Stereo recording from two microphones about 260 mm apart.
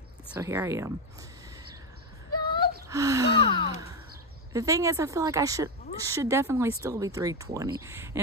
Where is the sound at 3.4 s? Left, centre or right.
Centre.